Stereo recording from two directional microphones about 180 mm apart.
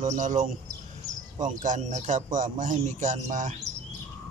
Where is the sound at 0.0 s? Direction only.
45° right (ahead or behind).